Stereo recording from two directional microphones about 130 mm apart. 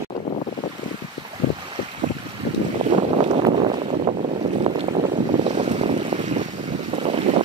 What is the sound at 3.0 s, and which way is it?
Boat, 55° right (ahead or behind).